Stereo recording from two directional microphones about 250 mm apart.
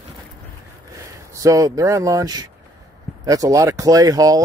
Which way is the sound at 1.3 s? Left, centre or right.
Centre.